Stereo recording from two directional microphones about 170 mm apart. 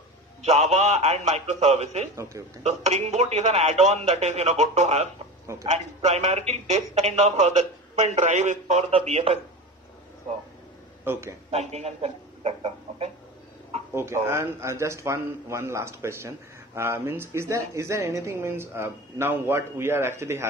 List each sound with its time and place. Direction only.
0.4 s speech: 40° right (ahead or behind)
2.1 s a man's voice: 20° right (ahead or behind)
2.6 s speech: 40° right (ahead or behind)
11.1 s a man's voice: 15° right (ahead or behind)
11.5 s speech: 40° right (ahead or behind)
13.9 s a man's voice: 15° right (ahead or behind)